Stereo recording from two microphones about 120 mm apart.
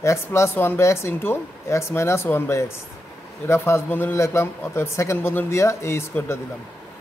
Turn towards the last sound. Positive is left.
turn(degrees=20)  # may be behind; listen again after turning